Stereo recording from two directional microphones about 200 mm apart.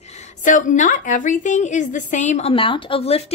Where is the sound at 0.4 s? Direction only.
40° left (ahead or behind).